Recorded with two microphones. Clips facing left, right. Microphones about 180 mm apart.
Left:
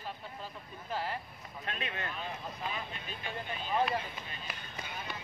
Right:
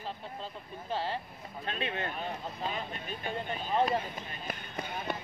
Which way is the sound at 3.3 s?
30° right (ahead or behind).